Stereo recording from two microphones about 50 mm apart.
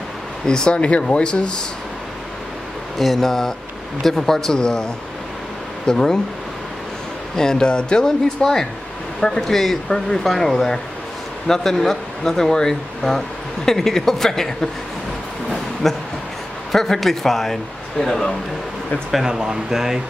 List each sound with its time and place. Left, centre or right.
0.5 s speech: centre
0.7 s speech: left
3.0 s speech: centre
5.9 s speech: centre
7.3 s speech: centre
15.5 s a sound: centre
16.7 s speech: centre
19.2 s speech: centre